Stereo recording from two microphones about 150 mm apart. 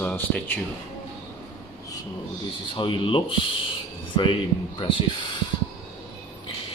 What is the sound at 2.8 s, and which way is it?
Speech, 35° left (ahead or behind).